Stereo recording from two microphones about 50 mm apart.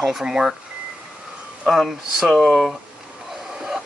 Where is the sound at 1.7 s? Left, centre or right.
Centre.